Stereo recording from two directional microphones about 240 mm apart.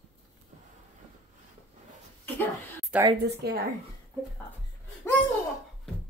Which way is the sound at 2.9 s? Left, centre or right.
Centre.